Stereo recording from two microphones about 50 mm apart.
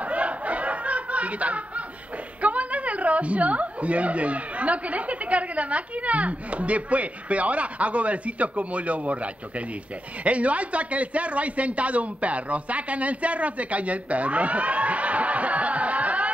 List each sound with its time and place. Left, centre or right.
0.0 s snicker: right
2.4 s a woman's voice: right